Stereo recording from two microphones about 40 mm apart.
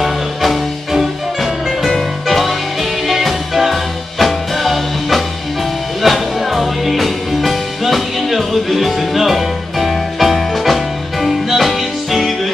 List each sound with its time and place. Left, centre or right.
0.0 s music: centre